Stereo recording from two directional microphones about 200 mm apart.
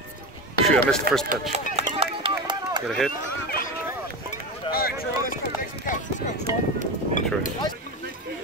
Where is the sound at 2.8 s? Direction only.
Centre (ahead or behind).